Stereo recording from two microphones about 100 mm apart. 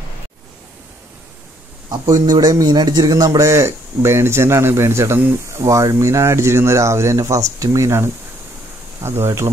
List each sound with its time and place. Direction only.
1.9 s a man's voice: 40° right (ahead or behind)